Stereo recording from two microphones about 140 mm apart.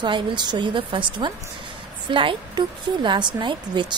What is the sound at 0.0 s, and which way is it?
A woman's voice, 35° right (ahead or behind).